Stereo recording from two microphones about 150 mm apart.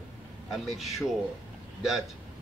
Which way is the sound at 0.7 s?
Centre (ahead or behind).